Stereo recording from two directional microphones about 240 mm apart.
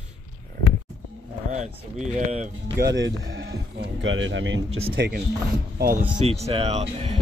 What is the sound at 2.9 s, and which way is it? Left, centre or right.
Speech, right.